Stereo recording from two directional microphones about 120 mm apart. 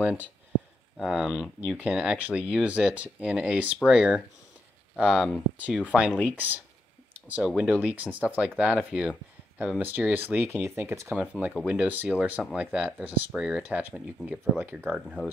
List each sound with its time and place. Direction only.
0.0 s speech: 10° right (ahead or behind)